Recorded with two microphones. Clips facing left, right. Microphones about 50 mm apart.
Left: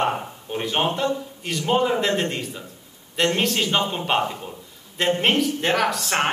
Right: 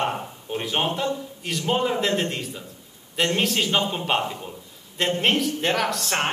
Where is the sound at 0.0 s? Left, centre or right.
Centre.